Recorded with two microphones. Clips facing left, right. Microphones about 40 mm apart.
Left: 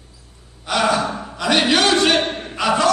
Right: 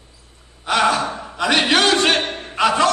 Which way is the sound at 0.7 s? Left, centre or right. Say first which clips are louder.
Right 1 dB; right.